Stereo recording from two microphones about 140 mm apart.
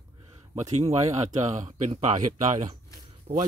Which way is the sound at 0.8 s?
50° right (ahead or behind).